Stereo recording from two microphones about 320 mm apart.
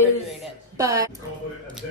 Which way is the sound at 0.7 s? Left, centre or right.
Centre.